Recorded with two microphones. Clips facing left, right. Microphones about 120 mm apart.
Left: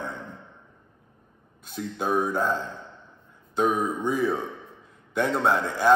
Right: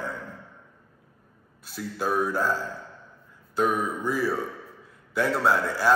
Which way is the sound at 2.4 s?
5° right (ahead or behind).